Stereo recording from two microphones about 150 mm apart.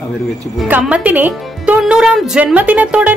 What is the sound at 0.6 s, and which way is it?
Speech, 10° right (ahead or behind).